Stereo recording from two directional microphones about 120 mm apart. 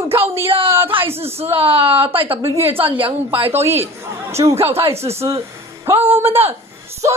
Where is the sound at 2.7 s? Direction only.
50° right (ahead or behind).